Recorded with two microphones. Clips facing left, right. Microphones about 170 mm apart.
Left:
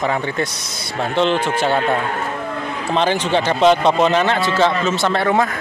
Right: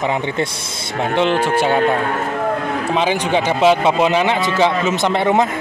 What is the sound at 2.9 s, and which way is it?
Speech, 10° right (ahead or behind).